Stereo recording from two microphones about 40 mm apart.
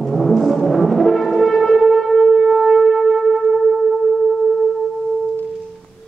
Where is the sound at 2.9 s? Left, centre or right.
Centre.